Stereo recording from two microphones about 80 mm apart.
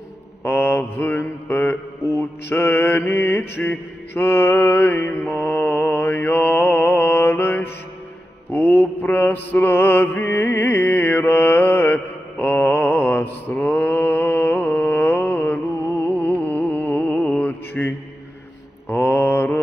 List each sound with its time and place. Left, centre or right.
0.4 s mantra: left
16.0 s a sound: left
16.4 s mantra: left